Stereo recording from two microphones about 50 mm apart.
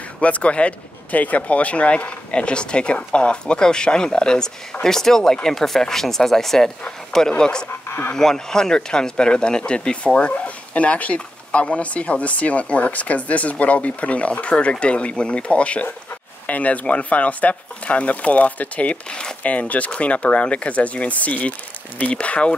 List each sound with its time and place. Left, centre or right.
0.2 s speech: left
19.4 s speech: left